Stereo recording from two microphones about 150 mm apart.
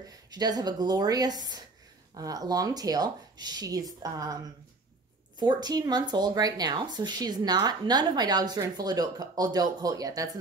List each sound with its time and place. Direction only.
0.3 s speech: 25° right (ahead or behind)
5.4 s speech: 30° right (ahead or behind)